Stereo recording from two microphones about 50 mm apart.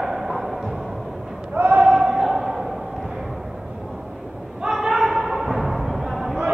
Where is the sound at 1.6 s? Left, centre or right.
Right.